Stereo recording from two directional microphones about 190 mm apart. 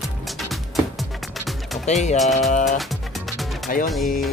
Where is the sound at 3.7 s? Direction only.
45° left (ahead or behind).